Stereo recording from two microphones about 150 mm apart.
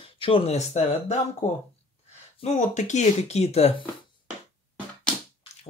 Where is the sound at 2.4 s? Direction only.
50° left (ahead or behind).